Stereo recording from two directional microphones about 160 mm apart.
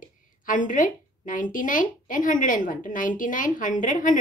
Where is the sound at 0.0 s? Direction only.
55° left (ahead or behind).